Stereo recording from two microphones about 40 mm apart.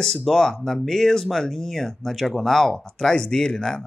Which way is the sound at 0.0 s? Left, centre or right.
Centre.